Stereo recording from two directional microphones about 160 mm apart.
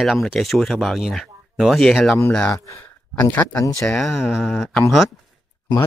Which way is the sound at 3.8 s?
5° left (ahead or behind).